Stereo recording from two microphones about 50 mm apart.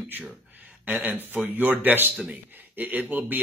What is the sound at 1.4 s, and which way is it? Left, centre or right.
Speech, right.